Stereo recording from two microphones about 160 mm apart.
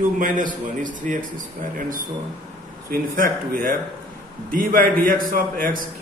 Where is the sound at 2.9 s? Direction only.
60° right (ahead or behind).